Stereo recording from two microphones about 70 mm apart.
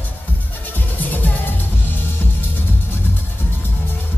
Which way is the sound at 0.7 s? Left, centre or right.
Left.